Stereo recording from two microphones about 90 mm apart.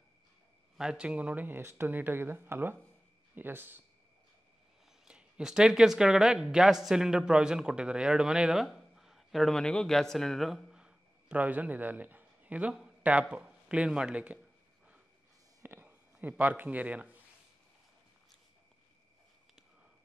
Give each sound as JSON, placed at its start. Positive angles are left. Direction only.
{"t": 0.7, "sound": "speech", "side_deg": -10}
{"t": 5.0, "sound": "speech", "side_deg": -5}
{"t": 15.6, "sound": "a sound", "side_deg": -20}